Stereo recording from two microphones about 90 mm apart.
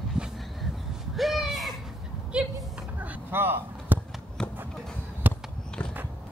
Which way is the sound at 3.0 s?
20° right (ahead or behind).